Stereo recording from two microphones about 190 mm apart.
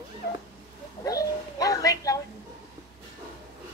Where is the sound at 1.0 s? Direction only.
20° left (ahead or behind).